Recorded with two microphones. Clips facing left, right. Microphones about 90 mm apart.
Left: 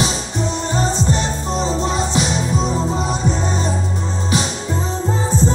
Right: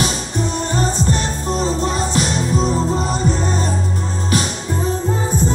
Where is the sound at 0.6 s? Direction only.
25° left (ahead or behind).